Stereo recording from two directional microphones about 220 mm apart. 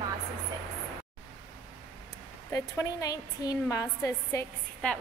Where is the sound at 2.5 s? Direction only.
15° left (ahead or behind).